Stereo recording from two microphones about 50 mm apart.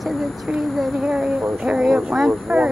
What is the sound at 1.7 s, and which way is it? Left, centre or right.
Speech, centre.